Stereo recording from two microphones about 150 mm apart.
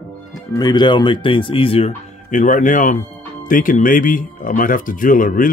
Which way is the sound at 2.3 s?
55° left (ahead or behind).